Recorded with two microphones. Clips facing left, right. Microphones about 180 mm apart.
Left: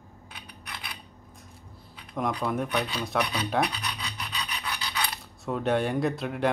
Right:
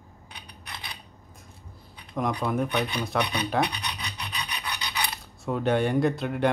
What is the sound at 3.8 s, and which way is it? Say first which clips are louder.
Filing: even; 20° right (ahead or behind).